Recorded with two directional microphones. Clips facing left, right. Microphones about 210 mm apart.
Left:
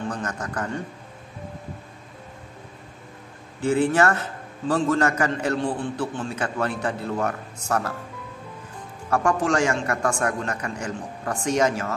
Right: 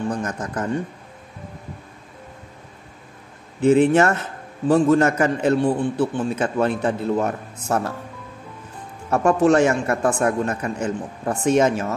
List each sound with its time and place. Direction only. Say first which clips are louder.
0.1 s a man's voice: right 4 dB; 20° right (ahead or behind)
3.6 s a man's voice: right 5 dB; 20° right (ahead or behind)
5.7 s a man's voice: right 6 dB; 10° right (ahead or behind)
6.3 s a man's voice: right 6 dB; 20° right (ahead or behind)
9.1 s a man's voice: right 6 dB; 20° right (ahead or behind)